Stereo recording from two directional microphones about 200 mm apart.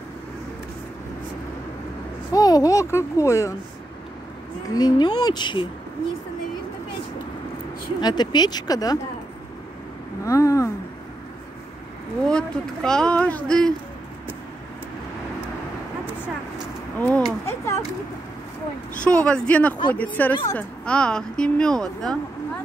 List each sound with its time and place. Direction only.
2.3 s a child's voice: 20° left (ahead or behind)
4.6 s speech: 20° left (ahead or behind)
8.0 s speech: 20° left (ahead or behind)
10.2 s speech: 15° left (ahead or behind)
12.3 s speech: 5° left (ahead or behind)
17.0 s a sound: 10° left (ahead or behind)
19.0 s a child's voice: 5° left (ahead or behind)